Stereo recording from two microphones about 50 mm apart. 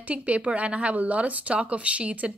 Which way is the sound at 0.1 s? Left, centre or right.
Right.